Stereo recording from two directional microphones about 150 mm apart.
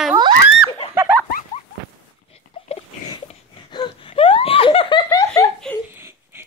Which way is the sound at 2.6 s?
35° left (ahead or behind).